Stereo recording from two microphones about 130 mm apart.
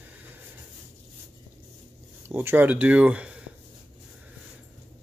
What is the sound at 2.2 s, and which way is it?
Speech, 20° right (ahead or behind).